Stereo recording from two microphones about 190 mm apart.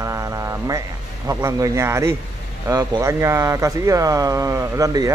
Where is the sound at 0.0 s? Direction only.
15° right (ahead or behind).